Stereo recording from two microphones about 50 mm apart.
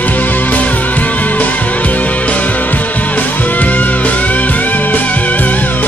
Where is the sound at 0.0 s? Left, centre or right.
Left.